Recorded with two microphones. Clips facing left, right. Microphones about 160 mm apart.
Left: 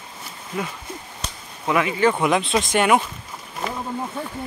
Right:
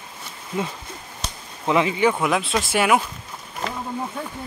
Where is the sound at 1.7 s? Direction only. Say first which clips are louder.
Right 1 dB; 25° right (ahead or behind).